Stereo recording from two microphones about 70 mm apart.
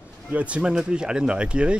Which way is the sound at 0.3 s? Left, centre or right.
Centre.